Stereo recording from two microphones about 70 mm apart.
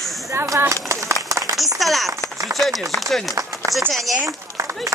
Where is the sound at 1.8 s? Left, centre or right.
Centre.